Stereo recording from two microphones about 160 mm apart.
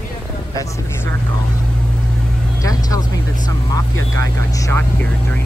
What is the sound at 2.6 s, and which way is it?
Speech, 20° left (ahead or behind).